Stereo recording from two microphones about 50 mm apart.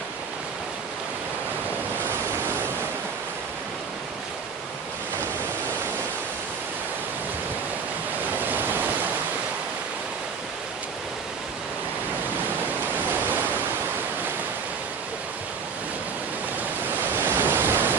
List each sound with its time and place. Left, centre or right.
17.2 s waves: right